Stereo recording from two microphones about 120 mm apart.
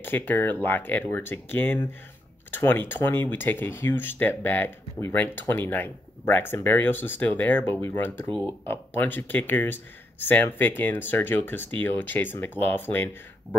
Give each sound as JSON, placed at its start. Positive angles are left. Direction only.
{"t": 0.0, "sound": "speech", "side_deg": 15}